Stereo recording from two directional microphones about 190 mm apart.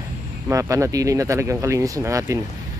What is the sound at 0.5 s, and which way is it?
Speech, 15° right (ahead or behind).